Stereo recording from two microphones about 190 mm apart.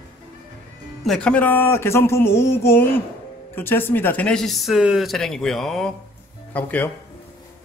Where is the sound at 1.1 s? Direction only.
5° left (ahead or behind).